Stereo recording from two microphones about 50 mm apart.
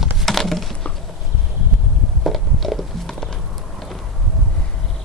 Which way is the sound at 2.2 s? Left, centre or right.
Centre.